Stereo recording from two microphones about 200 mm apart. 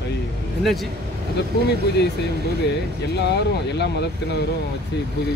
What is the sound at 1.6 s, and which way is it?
Speech, 55° left (ahead or behind).